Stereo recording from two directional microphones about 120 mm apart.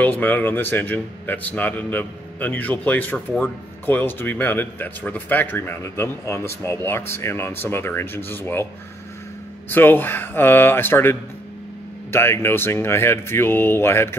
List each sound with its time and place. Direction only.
0.0 s speech: 15° left (ahead or behind)
9.7 s speech: 15° left (ahead or behind)